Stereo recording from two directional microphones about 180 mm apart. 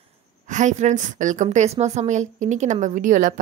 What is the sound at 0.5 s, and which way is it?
A woman's voice, 45° right (ahead or behind).